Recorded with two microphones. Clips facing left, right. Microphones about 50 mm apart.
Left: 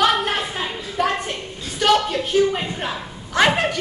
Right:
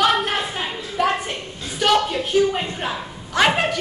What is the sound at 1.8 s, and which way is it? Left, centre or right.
A woman's voice, centre.